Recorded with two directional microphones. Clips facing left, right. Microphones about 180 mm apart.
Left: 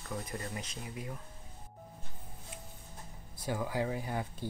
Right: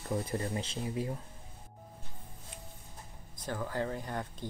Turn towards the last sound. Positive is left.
turn(degrees=10)  # may be behind; listen again after turning